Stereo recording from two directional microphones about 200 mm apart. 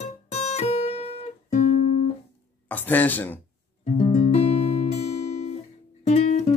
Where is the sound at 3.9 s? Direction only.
35° left (ahead or behind).